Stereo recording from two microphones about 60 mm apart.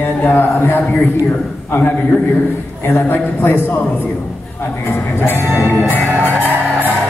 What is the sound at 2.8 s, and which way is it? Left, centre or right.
Music, left.